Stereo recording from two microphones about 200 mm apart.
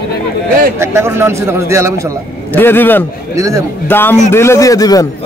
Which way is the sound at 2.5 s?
10° left (ahead or behind).